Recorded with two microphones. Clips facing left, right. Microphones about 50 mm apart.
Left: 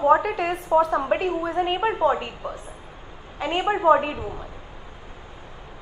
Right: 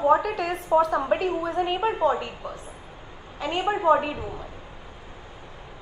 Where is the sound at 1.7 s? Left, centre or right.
Centre.